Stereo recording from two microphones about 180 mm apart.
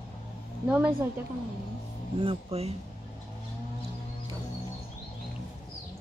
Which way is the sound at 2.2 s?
30° right (ahead or behind).